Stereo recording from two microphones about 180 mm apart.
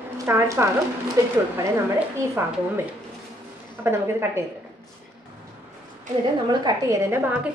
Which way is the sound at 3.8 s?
15° right (ahead or behind).